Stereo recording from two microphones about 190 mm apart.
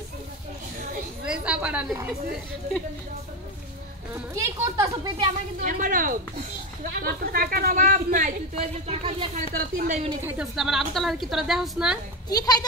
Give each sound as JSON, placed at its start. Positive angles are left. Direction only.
{"t": 1.2, "sound": "a sound", "side_deg": -5}
{"t": 4.1, "sound": "a child's voice", "side_deg": -15}
{"t": 5.6, "sound": "speech", "side_deg": -45}
{"t": 8.8, "sound": "speech", "side_deg": -30}
{"t": 9.5, "sound": "speech", "side_deg": -50}
{"t": 10.2, "sound": "a woman's voice", "side_deg": -5}
{"t": 12.3, "sound": "speech", "side_deg": 20}